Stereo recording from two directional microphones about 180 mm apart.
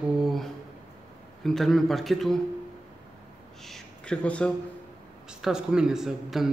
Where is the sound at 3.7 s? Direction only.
5° left (ahead or behind).